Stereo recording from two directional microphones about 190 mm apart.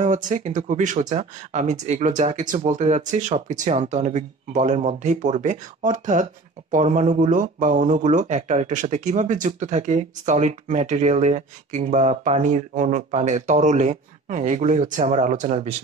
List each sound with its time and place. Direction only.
0.0 s speech: 40° right (ahead or behind)